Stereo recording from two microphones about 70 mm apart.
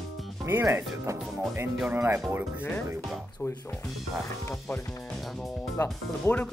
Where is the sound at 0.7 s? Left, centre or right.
Right.